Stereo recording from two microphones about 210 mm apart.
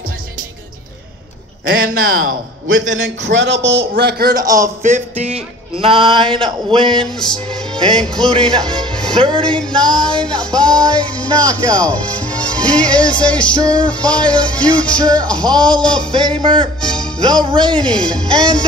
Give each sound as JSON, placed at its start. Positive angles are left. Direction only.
{"t": 1.6, "sound": "a man's voice", "side_deg": -75}
{"t": 4.6, "sound": "a sound", "side_deg": -35}
{"t": 7.0, "sound": "music", "side_deg": 5}
{"t": 9.1, "sound": "music", "side_deg": -25}
{"t": 9.4, "sound": "music", "side_deg": 5}
{"t": 16.3, "sound": "a sound", "side_deg": -25}
{"t": 16.8, "sound": "music", "side_deg": 5}
{"t": 17.5, "sound": "a sound", "side_deg": -20}
{"t": 17.7, "sound": "music", "side_deg": 5}